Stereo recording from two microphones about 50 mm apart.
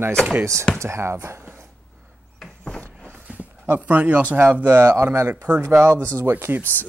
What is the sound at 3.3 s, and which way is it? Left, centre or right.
Horse, right.